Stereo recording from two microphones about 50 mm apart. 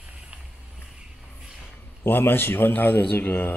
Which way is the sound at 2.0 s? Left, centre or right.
Left.